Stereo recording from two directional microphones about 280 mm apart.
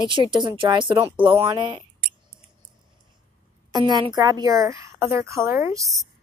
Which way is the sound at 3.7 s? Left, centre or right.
Centre.